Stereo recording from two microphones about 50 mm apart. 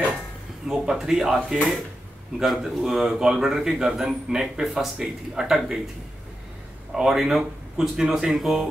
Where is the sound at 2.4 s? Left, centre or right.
Centre.